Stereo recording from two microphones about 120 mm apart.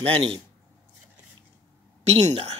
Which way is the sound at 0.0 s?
45° right (ahead or behind).